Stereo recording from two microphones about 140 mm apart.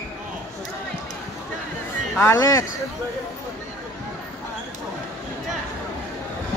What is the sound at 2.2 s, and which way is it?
Speech, 20° left (ahead or behind).